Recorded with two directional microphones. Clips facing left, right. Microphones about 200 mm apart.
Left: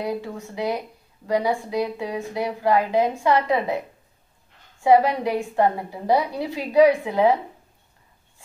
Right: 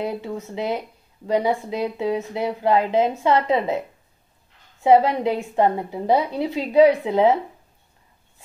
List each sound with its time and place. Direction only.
0.0 s a woman's voice: 20° right (ahead or behind)
4.8 s a woman's voice: 20° right (ahead or behind)